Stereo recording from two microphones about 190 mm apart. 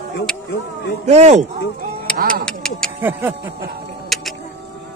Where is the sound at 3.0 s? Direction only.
10° right (ahead or behind).